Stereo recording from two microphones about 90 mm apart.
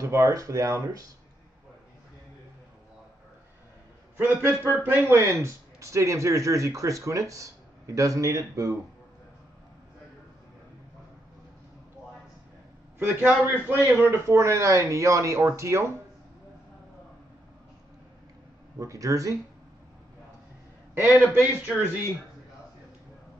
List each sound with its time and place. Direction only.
0.0 s speech: 35° right (ahead or behind)
4.2 s a man's voice: 25° right (ahead or behind)
13.0 s a man's voice: 25° right (ahead or behind)
18.8 s speech: 40° right (ahead or behind)
20.9 s a man's voice: 25° right (ahead or behind)